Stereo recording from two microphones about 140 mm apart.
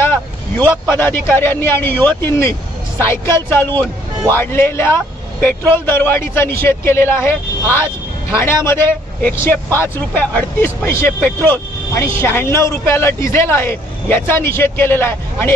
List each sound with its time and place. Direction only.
0.0 s vehicle: 15° left (ahead or behind)
0.9 s a man's voice: 15° left (ahead or behind)